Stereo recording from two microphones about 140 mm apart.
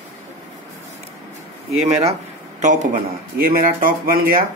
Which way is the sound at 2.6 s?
60° right (ahead or behind).